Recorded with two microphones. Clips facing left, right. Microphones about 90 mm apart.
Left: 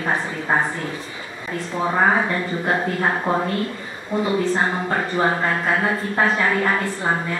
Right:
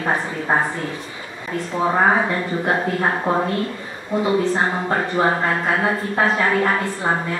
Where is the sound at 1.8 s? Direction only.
20° right (ahead or behind).